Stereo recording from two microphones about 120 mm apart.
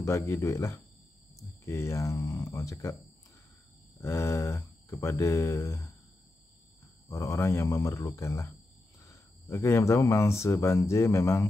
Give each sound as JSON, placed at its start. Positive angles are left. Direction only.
{"t": 0.0, "sound": "speech", "side_deg": 25}
{"t": 4.0, "sound": "speech", "side_deg": 25}
{"t": 7.1, "sound": "speech", "side_deg": 25}